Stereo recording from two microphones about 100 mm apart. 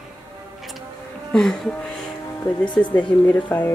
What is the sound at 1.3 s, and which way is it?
Speech, 5° left (ahead or behind).